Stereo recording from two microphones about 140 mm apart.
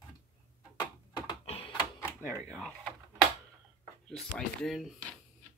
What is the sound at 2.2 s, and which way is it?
Speech, 20° right (ahead or behind).